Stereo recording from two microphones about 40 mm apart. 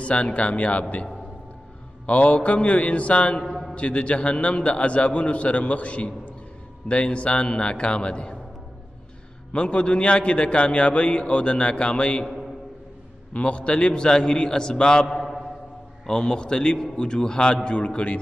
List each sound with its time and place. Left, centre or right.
0.0 s a man's voice: left
2.0 s a man's voice: left
3.4 s a sound: centre
3.7 s a man's voice: left
9.5 s a man's voice: left
13.3 s a man's voice: left
15.0 s a sound: centre
16.1 s a man's voice: centre